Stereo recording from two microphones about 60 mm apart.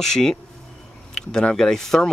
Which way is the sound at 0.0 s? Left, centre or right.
Centre.